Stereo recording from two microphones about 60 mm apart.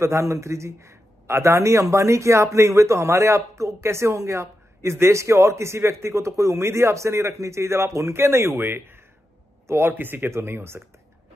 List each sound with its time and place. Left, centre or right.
0.0 s a man's voice: right